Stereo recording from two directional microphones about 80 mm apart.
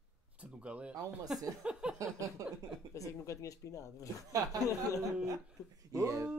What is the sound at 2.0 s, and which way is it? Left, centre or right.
Speech, right.